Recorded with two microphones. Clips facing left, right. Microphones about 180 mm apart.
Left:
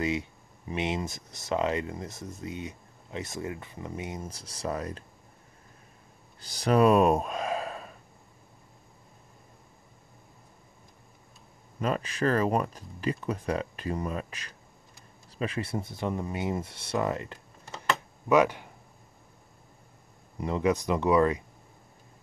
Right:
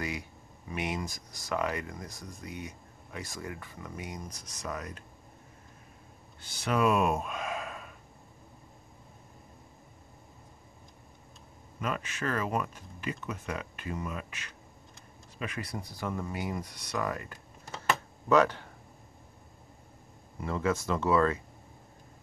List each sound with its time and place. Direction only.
0.0 s speech: 20° left (ahead or behind)
6.4 s speech: 35° left (ahead or behind)
11.8 s speech: 35° left (ahead or behind)
18.3 s speech: 10° left (ahead or behind)
20.3 s speech: 20° left (ahead or behind)